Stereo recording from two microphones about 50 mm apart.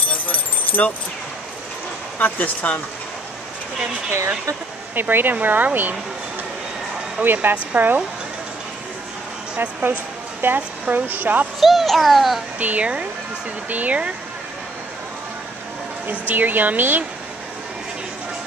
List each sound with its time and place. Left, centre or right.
0.1 s keys jangling: left
2.1 s speech: left
4.9 s speech: right
7.2 s speech: right
7.5 s speech: right
9.6 s speech: right
11.6 s a child's voice: centre
12.5 s speech: right
16.1 s speech: right